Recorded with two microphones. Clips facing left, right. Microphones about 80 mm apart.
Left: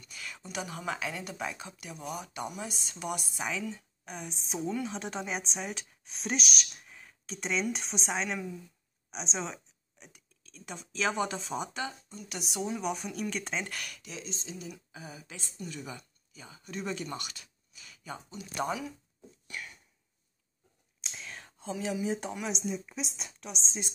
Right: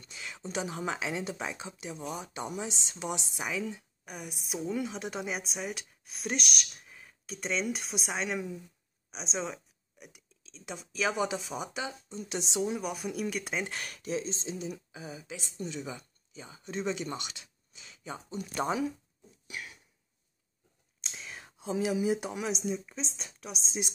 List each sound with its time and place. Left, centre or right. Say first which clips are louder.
0.0 s speech: right 3 dB; right
3.6 s a woman's voice: even; centre
12.1 s speech: right 5 dB; right
12.5 s speech: even; centre
13.7 s speech: right 6 dB; right
14.9 s speech: right 4 dB; right
19.4 s a sound: even; centre
21.0 s speech: even; centre